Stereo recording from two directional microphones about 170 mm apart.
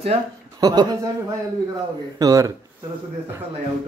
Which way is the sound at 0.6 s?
20° right (ahead or behind).